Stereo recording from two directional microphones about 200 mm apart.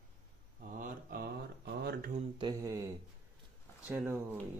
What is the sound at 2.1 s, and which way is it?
Mantra, 25° right (ahead or behind).